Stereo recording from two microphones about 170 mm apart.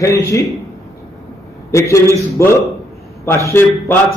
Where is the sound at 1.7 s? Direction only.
20° left (ahead or behind).